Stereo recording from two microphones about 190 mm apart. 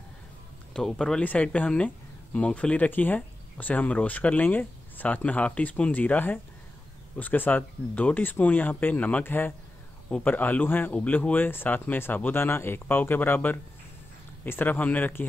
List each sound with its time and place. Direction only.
0.7 s speech: centre (ahead or behind)